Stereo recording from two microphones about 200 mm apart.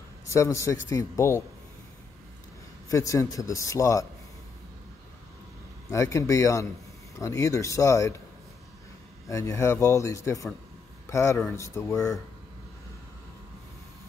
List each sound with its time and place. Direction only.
0.3 s speech: 15° left (ahead or behind)
2.9 s speech: 15° left (ahead or behind)
5.9 s speech: 15° left (ahead or behind)
9.3 s speech: 15° left (ahead or behind)